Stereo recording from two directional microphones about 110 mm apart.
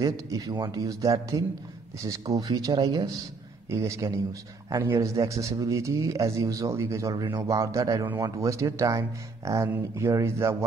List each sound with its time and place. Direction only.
0.0 s a man's voice: 30° right (ahead or behind)